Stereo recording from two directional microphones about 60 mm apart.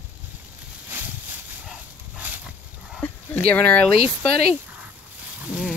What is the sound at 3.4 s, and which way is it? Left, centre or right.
Speech, left.